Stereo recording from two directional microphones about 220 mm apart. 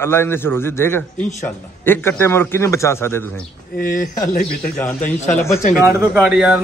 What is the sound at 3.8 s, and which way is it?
Speech, 40° left (ahead or behind).